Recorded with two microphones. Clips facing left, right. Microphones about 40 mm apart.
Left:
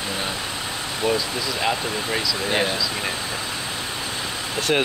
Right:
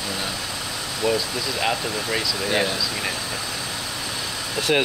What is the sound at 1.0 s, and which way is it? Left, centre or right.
Speech, left.